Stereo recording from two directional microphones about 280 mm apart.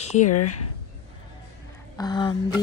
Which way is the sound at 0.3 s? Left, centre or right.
Left.